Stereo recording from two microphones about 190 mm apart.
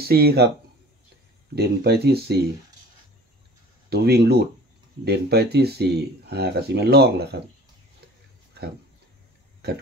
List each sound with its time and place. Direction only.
0.0 s speech: 55° right (ahead or behind)
1.5 s speech: 60° right (ahead or behind)
3.9 s speech: 55° right (ahead or behind)
8.6 s speech: 60° right (ahead or behind)